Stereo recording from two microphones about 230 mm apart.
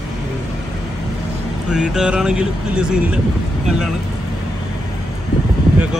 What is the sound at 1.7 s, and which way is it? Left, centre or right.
Speech, centre.